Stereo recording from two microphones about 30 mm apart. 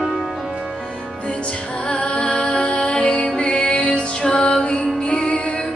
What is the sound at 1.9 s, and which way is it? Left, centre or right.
Music, left.